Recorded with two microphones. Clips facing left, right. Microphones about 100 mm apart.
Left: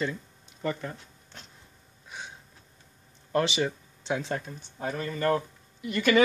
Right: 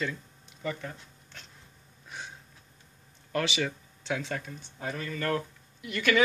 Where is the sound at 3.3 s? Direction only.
30° left (ahead or behind).